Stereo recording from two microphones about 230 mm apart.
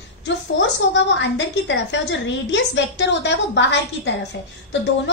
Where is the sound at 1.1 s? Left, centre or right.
Left.